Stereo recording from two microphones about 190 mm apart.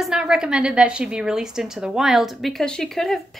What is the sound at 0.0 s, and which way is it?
A woman's voice, 5° right (ahead or behind).